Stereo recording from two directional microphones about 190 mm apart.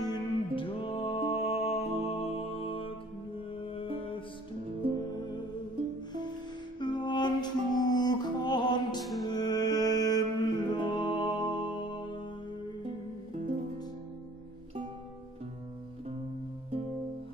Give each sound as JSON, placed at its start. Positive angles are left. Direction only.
{"t": 0.0, "sound": "music", "side_deg": 25}
{"t": 6.8, "sound": "music", "side_deg": 25}